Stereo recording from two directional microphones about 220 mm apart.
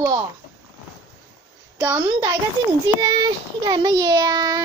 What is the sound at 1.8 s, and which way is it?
Speech, 10° right (ahead or behind).